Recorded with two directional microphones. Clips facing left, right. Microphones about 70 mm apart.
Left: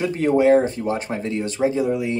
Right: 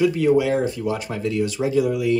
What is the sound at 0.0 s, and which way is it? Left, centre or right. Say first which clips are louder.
Speech: even; left.